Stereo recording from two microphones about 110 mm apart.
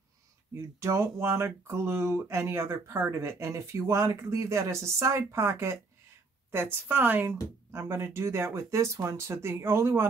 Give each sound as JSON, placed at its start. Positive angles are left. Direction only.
{"t": 0.6, "sound": "a woman's voice", "side_deg": -25}